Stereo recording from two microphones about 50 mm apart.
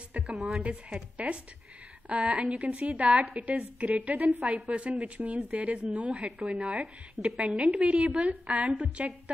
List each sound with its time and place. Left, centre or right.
0.2 s a woman's voice: right